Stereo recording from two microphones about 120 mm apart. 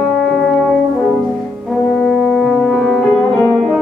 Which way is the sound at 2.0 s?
5° left (ahead or behind).